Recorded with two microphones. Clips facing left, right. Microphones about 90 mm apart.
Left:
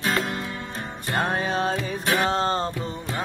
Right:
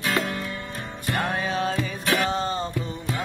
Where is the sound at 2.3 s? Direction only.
40° left (ahead or behind).